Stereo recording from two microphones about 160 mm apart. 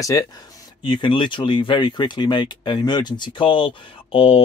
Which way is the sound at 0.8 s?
30° left (ahead or behind).